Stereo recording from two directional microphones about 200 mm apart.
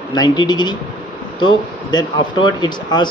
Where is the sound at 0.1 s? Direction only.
20° left (ahead or behind).